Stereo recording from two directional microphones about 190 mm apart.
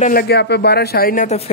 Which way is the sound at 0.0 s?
55° left (ahead or behind).